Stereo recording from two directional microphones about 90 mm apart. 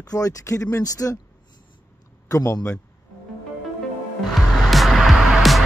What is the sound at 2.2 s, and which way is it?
Speech, 35° left (ahead or behind).